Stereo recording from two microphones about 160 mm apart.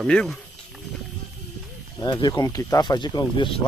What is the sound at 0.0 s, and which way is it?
Wild animals, 5° left (ahead or behind).